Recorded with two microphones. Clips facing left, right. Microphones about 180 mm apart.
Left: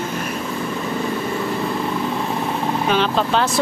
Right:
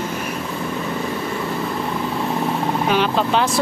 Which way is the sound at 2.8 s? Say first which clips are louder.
Even; 10° right (ahead or behind).